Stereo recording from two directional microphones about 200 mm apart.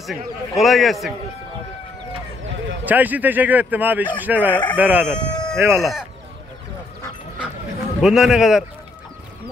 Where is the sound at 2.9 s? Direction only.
10° right (ahead or behind).